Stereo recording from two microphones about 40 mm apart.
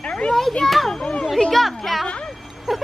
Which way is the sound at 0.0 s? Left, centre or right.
Left.